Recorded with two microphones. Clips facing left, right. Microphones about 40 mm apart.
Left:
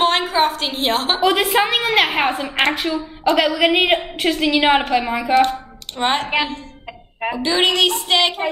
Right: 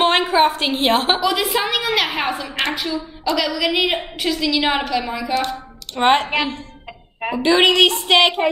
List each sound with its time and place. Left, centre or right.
0.5 s a woman's voice: right
0.8 s a woman's voice: centre
1.2 s a woman's voice: left
5.9 s a woman's voice: right
7.2 s a woman's voice: centre
7.4 s a woman's voice: right